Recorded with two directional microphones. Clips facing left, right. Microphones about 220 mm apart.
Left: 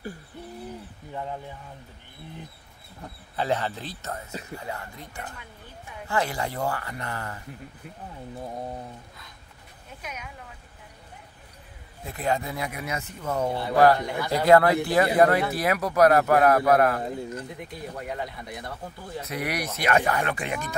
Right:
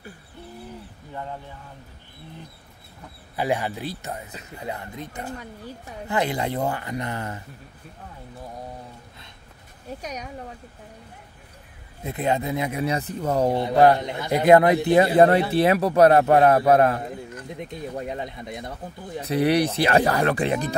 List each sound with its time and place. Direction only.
3.3 s a man's voice: 10° right (ahead or behind)
10.0 s speech: 35° right (ahead or behind)
12.0 s a man's voice: 20° right (ahead or behind)
13.5 s a man's voice: 20° right (ahead or behind)